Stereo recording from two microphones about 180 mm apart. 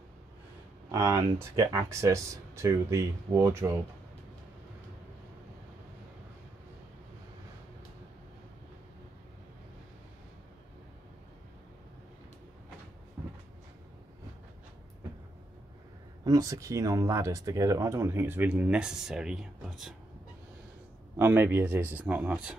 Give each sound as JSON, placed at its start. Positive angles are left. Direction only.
{"t": 0.9, "sound": "speech", "side_deg": -15}
{"t": 16.3, "sound": "speech", "side_deg": -20}
{"t": 21.2, "sound": "speech", "side_deg": -10}